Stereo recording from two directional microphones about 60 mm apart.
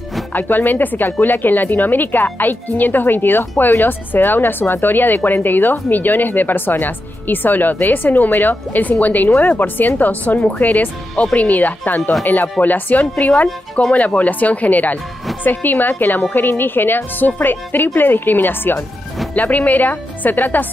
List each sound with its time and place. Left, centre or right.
0.3 s a woman's voice: left
12.0 s speech: centre
12.3 s a woman's voice: left